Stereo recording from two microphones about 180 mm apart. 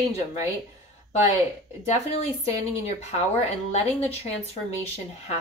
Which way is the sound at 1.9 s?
40° left (ahead or behind).